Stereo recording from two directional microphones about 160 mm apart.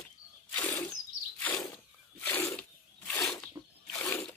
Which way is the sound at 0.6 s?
10° left (ahead or behind).